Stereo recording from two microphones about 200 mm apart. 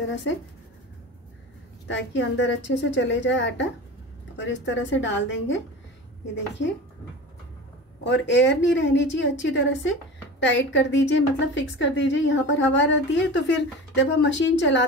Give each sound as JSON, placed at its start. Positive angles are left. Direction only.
{"t": 1.9, "sound": "a woman's voice", "side_deg": 65}
{"t": 8.0, "sound": "a woman's voice", "side_deg": 65}